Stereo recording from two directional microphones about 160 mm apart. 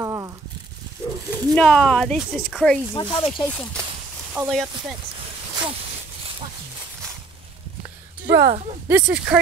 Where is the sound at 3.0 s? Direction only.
30° left (ahead or behind).